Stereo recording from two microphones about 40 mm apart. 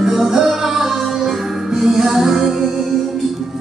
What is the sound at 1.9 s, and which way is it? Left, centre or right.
Music, centre.